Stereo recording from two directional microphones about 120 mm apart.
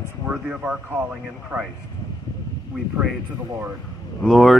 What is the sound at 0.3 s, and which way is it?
Speech, 10° right (ahead or behind).